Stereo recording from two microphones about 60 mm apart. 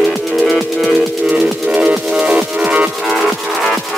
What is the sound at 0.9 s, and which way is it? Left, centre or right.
Music, right.